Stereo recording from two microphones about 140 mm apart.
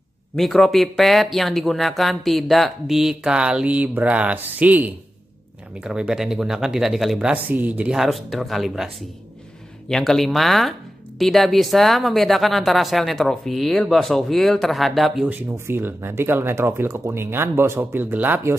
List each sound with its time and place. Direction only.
0.4 s speech: centre (ahead or behind)
15.2 s speech: 15° right (ahead or behind)